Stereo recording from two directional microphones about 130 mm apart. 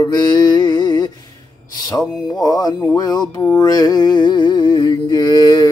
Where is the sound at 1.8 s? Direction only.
25° left (ahead or behind).